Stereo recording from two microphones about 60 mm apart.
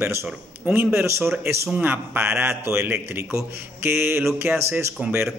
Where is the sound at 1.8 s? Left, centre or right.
Right.